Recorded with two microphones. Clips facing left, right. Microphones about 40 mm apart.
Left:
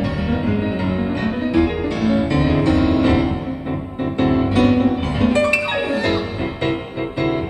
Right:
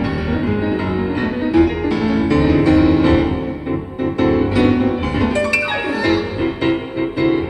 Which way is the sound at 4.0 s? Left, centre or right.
Left.